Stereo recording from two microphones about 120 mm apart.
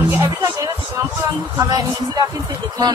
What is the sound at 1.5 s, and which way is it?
Speech, 30° right (ahead or behind).